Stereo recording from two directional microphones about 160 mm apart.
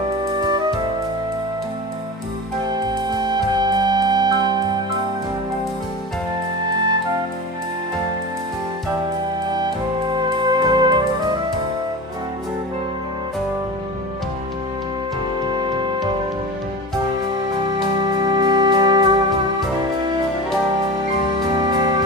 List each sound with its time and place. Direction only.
0.2 s music: 25° right (ahead or behind)
2.7 s music: 25° right (ahead or behind)
9.5 s music: 25° right (ahead or behind)
15.5 s music: 30° right (ahead or behind)
18.0 s music: 25° right (ahead or behind)
21.5 s music: 25° right (ahead or behind)